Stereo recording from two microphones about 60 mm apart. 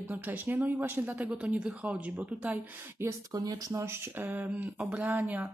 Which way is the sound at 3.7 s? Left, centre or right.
Right.